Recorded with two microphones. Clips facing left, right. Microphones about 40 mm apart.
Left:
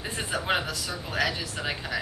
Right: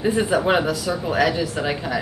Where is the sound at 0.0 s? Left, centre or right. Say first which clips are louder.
Right 12 dB; centre.